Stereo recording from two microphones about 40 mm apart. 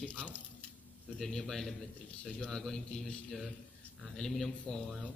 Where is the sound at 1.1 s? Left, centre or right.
Centre.